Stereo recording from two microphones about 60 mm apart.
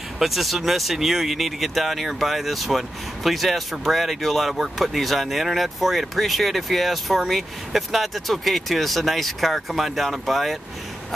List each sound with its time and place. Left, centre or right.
0.2 s speech: centre